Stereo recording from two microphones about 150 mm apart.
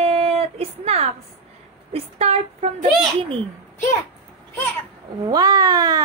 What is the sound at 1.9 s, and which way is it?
Speech, 45° right (ahead or behind).